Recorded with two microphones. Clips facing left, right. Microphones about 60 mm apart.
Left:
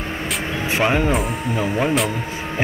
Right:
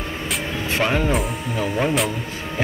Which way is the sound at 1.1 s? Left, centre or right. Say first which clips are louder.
Left 2 dB; centre.